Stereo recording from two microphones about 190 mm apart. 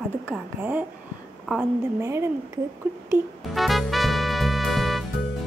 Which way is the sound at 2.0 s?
15° right (ahead or behind).